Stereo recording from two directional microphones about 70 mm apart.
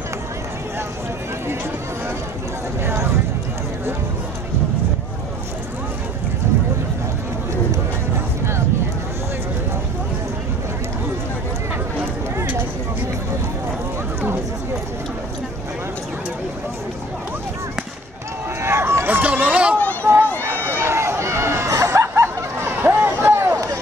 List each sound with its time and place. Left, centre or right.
2.8 s a sound: right
18.6 s run: right; by 19.8 s centre
19.8 s a sound: left
20.4 s run: right
21.8 s hubbub: right
23.5 s run: right